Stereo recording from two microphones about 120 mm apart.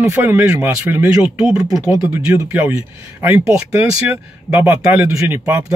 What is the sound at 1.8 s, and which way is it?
A man's voice, 25° right (ahead or behind).